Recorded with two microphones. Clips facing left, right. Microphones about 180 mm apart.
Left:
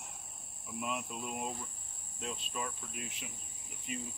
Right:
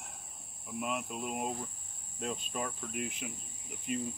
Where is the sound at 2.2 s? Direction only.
45° right (ahead or behind).